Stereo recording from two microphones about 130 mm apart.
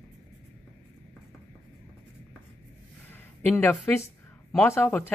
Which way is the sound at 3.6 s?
20° left (ahead or behind).